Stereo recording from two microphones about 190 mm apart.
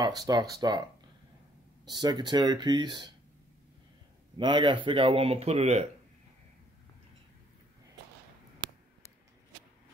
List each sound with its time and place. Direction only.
0.2 s speech: 20° right (ahead or behind)
1.9 s speech: 20° right (ahead or behind)
4.4 s speech: 25° right (ahead or behind)